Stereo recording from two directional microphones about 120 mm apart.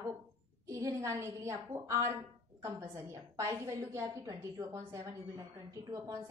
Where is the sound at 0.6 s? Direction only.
25° right (ahead or behind).